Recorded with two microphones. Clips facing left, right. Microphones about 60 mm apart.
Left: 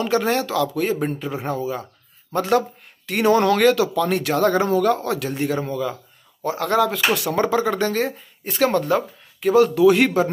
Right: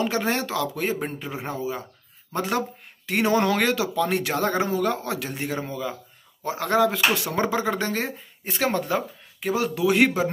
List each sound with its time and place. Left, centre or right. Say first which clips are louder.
0.0 s speech: left 4 dB; centre
1.0 s speech: left 6 dB; centre
3.1 s speech: left 4 dB; centre